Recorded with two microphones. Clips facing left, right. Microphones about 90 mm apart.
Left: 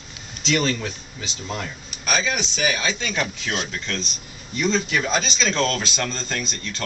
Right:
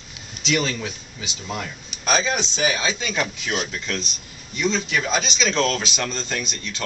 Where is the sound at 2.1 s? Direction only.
30° right (ahead or behind).